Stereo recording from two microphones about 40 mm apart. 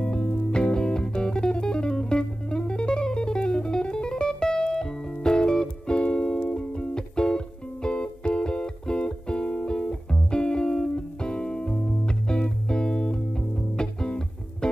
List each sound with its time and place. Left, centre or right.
0.0 s music: left